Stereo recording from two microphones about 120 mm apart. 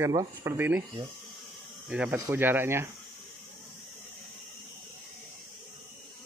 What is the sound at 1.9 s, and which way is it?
Speech, 10° right (ahead or behind).